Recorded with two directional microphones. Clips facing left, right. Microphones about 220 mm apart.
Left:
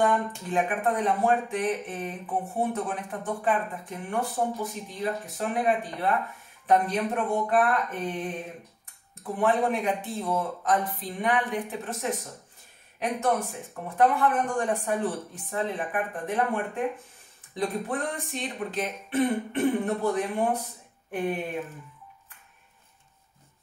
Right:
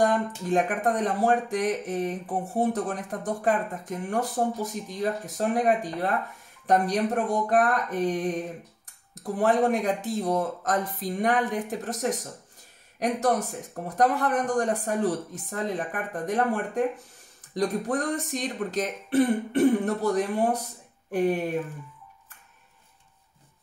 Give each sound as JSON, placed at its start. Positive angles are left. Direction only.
{"t": 0.5, "sound": "speech", "side_deg": -40}